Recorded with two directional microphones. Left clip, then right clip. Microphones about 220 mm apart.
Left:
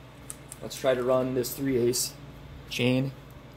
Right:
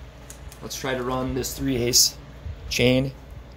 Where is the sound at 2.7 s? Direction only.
20° right (ahead or behind).